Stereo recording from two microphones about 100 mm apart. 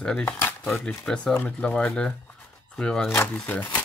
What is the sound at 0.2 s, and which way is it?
Speech, 25° left (ahead or behind).